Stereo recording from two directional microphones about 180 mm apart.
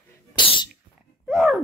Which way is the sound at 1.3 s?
Centre (ahead or behind).